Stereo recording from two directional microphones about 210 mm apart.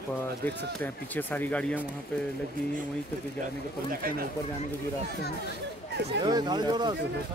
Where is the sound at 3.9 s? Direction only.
45° right (ahead or behind).